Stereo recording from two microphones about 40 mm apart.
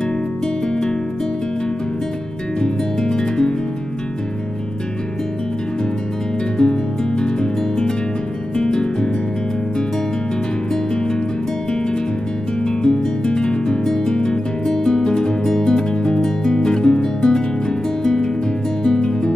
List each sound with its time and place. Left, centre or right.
2.6 s music: centre
6.6 s music: left
10.7 s music: centre
12.6 s music: centre